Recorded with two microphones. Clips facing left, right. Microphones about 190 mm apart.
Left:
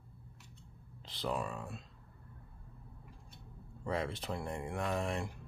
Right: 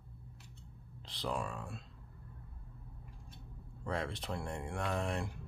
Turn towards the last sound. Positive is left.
turn(degrees=0)  # may be behind; listen again after turning